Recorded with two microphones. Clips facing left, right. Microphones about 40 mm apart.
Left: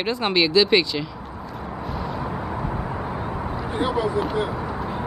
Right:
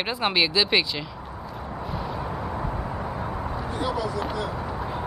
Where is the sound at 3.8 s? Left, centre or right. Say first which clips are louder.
Left 5 dB; left.